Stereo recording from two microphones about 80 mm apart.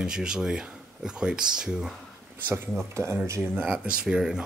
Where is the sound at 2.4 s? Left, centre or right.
Right.